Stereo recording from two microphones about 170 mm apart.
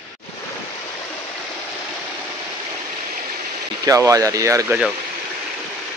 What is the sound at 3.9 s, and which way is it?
Speech, 20° right (ahead or behind).